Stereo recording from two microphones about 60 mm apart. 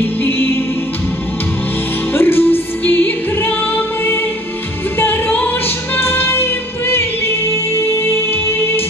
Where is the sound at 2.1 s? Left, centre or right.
Left.